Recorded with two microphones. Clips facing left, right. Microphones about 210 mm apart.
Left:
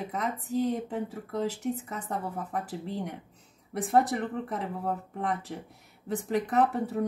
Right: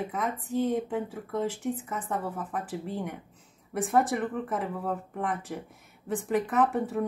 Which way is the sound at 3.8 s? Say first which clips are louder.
Even; 40° left (ahead or behind).